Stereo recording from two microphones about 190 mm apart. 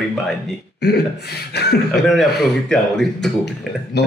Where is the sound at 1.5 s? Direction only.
60° left (ahead or behind).